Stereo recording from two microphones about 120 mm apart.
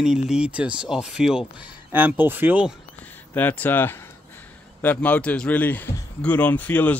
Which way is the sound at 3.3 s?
15° left (ahead or behind).